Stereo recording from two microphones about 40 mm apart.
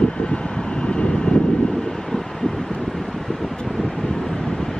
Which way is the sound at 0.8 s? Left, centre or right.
Left.